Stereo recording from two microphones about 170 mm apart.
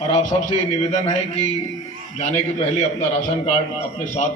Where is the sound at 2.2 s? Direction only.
40° left (ahead or behind).